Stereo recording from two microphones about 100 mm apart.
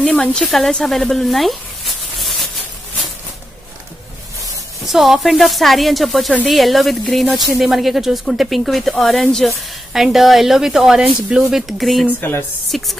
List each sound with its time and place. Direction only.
0.0 s speech: 10° left (ahead or behind)
4.8 s speech: centre (ahead or behind)
12.2 s a woman's voice: 20° left (ahead or behind)
12.7 s speech: centre (ahead or behind)